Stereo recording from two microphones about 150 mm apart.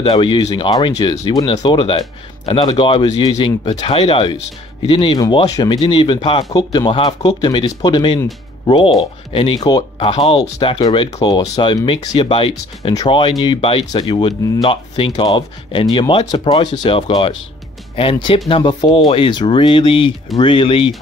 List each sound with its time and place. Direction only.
0.1 s speech: 30° left (ahead or behind)